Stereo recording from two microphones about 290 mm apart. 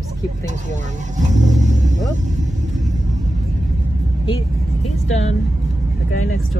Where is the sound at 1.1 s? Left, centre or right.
Right.